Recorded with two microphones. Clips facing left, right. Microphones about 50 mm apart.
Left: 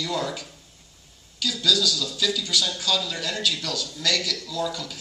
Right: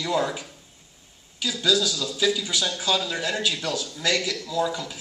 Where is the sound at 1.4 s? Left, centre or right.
Centre.